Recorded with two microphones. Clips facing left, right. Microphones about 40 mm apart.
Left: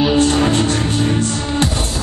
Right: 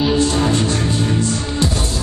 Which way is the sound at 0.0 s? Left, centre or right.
Left.